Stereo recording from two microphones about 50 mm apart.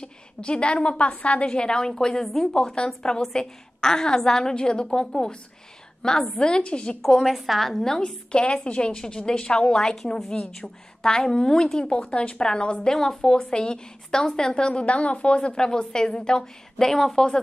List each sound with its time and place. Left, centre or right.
0.0 s a woman's voice: centre
7.0 s a woman's voice: centre